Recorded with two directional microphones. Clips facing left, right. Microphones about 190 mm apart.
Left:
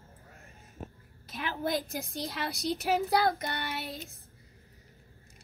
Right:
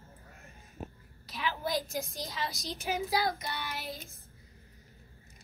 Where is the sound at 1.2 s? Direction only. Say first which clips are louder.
Left 2 dB; 50° left (ahead or behind).